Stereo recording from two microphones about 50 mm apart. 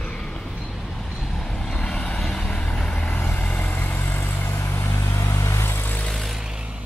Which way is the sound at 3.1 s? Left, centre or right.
Left.